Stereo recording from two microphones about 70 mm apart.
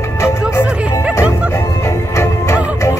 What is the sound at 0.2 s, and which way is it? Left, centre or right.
Music, left.